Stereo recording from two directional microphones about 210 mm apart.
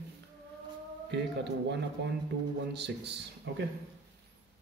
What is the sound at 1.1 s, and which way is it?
Speech, 55° right (ahead or behind).